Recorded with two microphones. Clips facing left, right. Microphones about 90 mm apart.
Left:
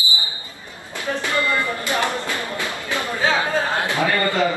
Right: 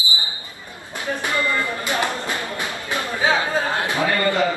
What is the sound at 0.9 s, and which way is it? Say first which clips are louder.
Speech: left 1 dB; 20° right (ahead or behind).